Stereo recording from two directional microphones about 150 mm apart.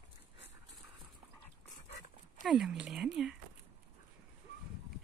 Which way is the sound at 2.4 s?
5° right (ahead or behind).